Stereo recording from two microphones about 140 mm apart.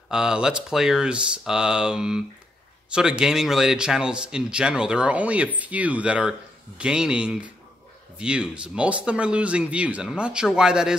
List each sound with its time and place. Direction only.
0.1 s speech: 5° right (ahead or behind)